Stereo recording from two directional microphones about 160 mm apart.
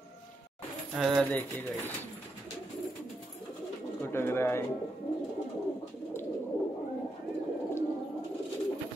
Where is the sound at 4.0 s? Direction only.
15° left (ahead or behind).